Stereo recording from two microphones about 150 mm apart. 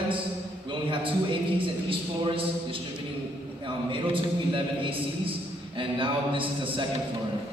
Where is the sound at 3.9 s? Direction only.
35° right (ahead or behind).